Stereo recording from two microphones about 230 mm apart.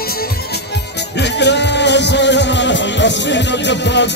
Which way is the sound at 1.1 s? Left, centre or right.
Left.